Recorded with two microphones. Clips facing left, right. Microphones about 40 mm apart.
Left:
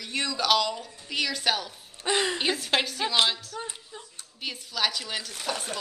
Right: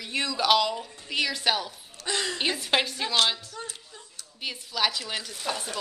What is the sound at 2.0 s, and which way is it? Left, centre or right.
Speech, left.